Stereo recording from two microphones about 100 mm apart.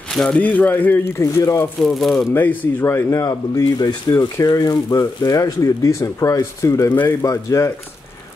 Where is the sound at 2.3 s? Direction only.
20° left (ahead or behind).